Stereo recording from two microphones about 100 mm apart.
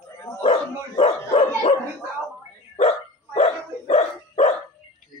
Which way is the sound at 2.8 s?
65° left (ahead or behind).